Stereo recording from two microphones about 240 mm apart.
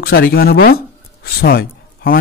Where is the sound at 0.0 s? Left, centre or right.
Left.